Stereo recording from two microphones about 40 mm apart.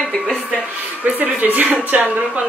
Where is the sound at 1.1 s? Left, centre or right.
Right.